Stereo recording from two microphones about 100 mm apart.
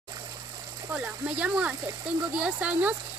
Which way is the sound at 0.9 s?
15° right (ahead or behind).